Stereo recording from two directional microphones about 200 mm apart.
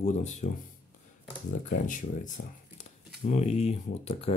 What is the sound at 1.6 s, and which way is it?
Speech, 40° left (ahead or behind).